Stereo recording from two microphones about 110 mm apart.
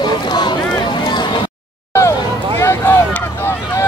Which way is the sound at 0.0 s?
40° left (ahead or behind).